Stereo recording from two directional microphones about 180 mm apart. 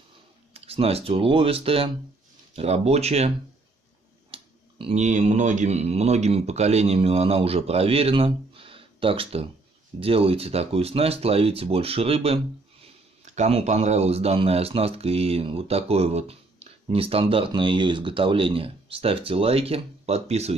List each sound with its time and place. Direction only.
0.5 s speech: 35° right (ahead or behind)